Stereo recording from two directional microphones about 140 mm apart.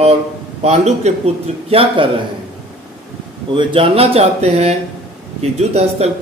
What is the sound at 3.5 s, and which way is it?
A man's voice, 40° right (ahead or behind).